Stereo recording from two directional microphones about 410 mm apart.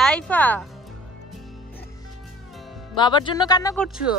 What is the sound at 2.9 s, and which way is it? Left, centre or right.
Speech, centre.